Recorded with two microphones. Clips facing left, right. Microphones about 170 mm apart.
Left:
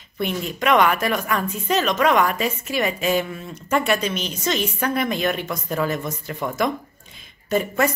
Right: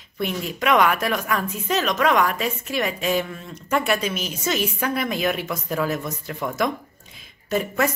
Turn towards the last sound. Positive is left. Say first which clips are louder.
# left 2 dB
turn(degrees=0)  # may be behind; listen again after turning